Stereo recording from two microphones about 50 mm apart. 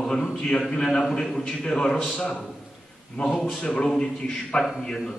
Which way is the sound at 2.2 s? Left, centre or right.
Left.